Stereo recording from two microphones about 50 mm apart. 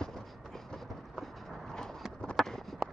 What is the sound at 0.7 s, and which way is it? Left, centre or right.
Vehicle, centre.